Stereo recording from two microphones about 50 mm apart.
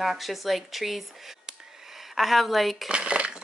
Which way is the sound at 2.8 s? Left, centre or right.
Right.